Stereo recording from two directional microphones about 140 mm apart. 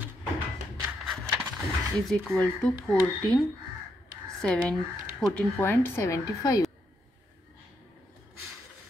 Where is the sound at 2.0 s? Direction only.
10° left (ahead or behind); by 6.7 s 25° left (ahead or behind).